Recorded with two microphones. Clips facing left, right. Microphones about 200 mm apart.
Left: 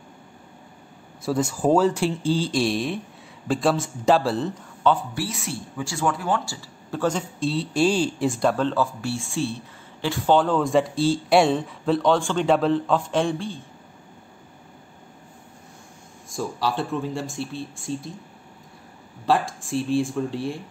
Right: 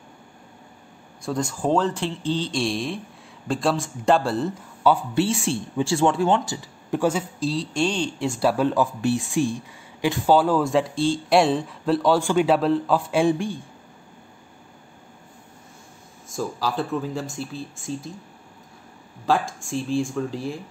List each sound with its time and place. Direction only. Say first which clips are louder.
1.2 s speech: left 3 dB; 5° left (ahead or behind)
5.1 s a man's voice: right 7 dB; 25° right (ahead or behind); by 13.6 s 10° right (ahead or behind)
16.3 s speech: even; centre (ahead or behind)
19.2 s speech: left 1 dB; centre (ahead or behind)